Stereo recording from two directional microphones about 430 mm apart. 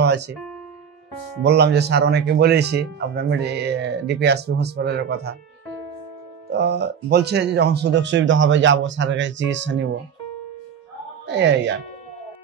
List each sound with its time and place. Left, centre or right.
1.4 s speech: right
6.5 s speech: right
11.2 s speech: right